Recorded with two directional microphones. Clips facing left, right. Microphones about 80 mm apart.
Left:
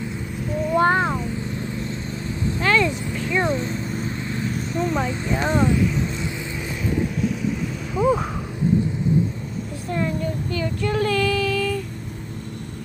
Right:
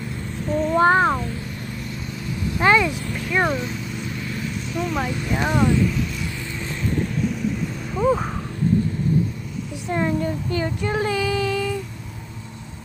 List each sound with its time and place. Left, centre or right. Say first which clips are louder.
0.5 s vehicle: right 3 dB; centre
0.7 s a sound: right 2 dB; right
2.6 s vehicle: right 3 dB; right
3.4 s vehicle: left 1 dB; left
5.5 s speech: right 1 dB; left
6.9 s vehicle: left 1 dB; centre
9.8 s child singing: right 3 dB; right
10.8 s child singing: left 5 dB; centre